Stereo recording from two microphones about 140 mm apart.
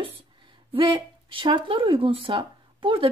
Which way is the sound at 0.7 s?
35° right (ahead or behind).